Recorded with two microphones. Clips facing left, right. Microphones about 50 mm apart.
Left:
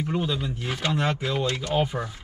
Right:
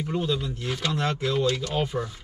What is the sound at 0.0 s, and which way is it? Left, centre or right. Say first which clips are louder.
Speech: even; centre.